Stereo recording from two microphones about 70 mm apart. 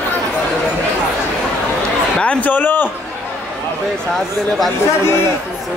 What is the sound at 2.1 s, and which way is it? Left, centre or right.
Speech, left.